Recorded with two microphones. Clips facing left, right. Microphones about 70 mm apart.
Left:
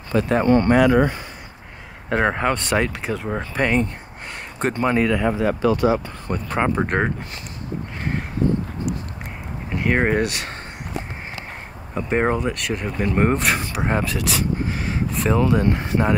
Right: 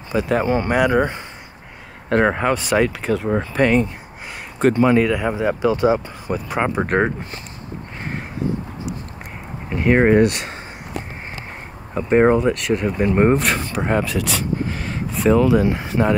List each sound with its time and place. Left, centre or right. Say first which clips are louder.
0.3 s speech: left 3 dB; centre
2.0 s speech: right 3 dB; centre
5.3 s speech: right 1 dB; centre
6.2 s speech: left 1 dB; centre
9.8 s speech: right 6 dB; centre
11.9 s speech: right 6 dB; centre